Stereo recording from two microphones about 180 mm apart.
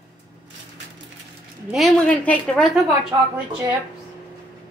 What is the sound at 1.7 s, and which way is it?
A woman's voice, centre (ahead or behind).